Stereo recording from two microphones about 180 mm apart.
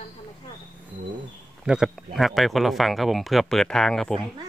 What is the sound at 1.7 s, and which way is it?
Speech, centre (ahead or behind).